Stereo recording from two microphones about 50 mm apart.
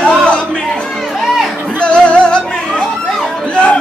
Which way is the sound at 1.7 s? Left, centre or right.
Left.